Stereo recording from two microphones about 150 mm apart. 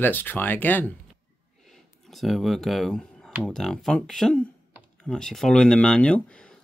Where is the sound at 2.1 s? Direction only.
Centre (ahead or behind).